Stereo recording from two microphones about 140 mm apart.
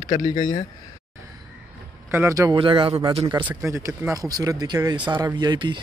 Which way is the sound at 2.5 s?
40° right (ahead or behind).